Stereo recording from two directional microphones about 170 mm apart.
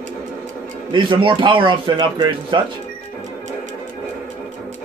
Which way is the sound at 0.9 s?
30° right (ahead or behind).